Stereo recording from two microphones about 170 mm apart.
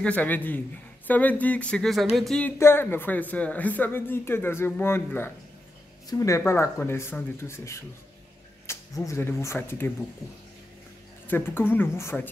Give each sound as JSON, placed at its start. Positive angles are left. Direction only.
{"t": 0.0, "sound": "a man's voice", "side_deg": 10}
{"t": 11.2, "sound": "a man's voice", "side_deg": 15}